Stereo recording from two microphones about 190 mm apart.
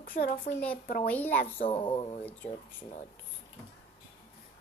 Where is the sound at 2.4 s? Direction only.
10° left (ahead or behind).